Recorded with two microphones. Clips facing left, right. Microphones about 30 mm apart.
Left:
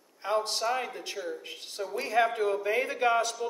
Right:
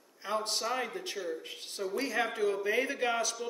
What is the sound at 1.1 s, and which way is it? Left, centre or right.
Speech, centre.